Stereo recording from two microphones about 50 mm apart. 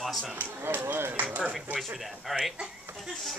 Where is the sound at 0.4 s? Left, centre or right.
Right.